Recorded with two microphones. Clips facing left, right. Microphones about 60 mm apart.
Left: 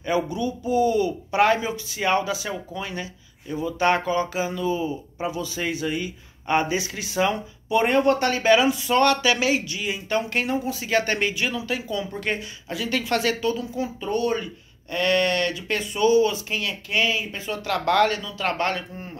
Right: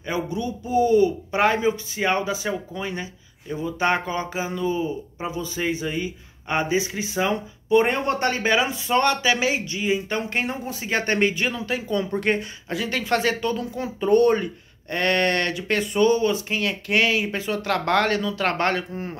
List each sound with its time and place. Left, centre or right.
0.1 s speech: right
6.4 s speech: centre
7.7 s speech: right
13.5 s speech: right
16.9 s speech: right
17.5 s speech: right